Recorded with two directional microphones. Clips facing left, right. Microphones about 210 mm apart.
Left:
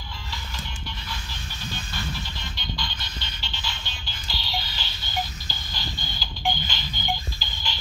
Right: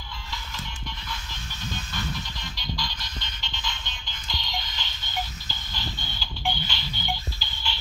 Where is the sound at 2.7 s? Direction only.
25° left (ahead or behind).